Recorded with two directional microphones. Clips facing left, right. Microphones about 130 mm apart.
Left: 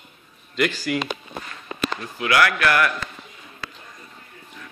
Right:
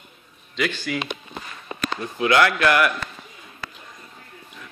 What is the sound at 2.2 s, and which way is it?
Speech, 25° right (ahead or behind).